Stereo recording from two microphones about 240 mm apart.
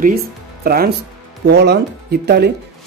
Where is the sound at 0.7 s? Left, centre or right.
Right.